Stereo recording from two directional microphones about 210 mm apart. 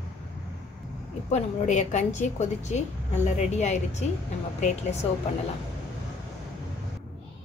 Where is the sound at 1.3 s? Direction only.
35° left (ahead or behind).